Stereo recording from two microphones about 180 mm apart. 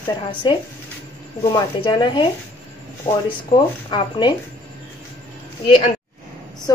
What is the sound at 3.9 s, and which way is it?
Speech, 25° left (ahead or behind).